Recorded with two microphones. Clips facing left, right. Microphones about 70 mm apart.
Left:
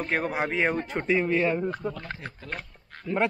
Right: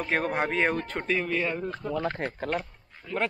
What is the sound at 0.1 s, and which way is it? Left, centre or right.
Speech, centre.